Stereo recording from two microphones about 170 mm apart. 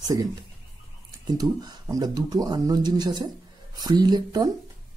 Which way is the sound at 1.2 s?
25° right (ahead or behind).